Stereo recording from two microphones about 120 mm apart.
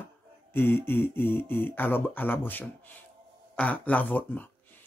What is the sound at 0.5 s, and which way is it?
Speech, 20° left (ahead or behind).